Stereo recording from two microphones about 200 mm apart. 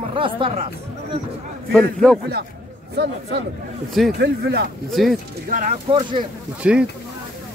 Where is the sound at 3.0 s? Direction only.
60° right (ahead or behind).